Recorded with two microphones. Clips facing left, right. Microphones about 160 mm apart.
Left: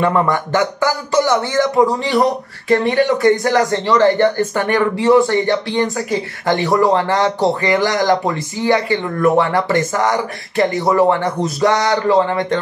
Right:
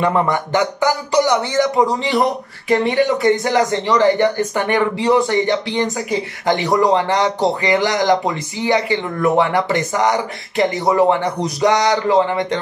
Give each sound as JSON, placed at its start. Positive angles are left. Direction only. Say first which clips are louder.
{"t": 0.0, "sound": "speech", "louder": "left 1 dB", "side_deg": -20}